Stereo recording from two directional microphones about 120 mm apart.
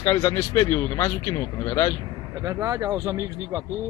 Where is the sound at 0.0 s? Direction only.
25° left (ahead or behind).